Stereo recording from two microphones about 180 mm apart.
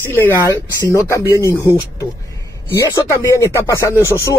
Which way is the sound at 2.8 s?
15° left (ahead or behind).